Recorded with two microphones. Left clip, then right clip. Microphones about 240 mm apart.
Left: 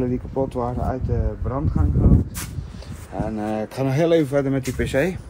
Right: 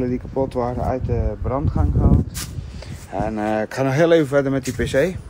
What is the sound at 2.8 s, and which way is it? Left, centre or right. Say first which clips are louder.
Speech: right 4 dB; centre.